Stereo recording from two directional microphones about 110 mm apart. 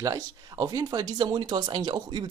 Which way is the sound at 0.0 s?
35° right (ahead or behind).